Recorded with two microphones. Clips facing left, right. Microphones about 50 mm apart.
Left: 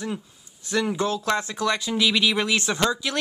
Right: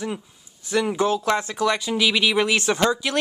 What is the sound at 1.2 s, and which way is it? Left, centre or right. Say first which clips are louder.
Speech: right 3 dB; centre.